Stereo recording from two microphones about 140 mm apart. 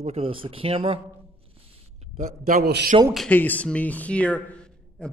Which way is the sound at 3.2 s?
10° left (ahead or behind).